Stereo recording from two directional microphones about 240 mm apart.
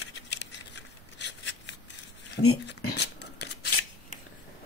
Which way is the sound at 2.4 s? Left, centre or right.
Left.